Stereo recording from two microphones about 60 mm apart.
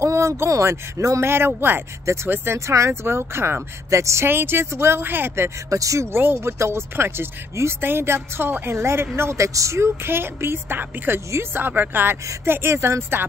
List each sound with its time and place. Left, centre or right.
0.0 s speech: right
1.2 s a woman's voice: right
3.9 s speech: right
4.3 s a woman's voice: right
5.7 s speech: right
6.1 s a woman's voice: right
8.7 s a woman's voice: right
12.4 s speech: right